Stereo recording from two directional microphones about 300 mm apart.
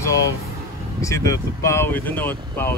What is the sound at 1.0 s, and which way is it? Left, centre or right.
Speech, centre.